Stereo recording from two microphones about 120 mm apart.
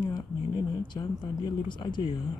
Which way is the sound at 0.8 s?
40° left (ahead or behind).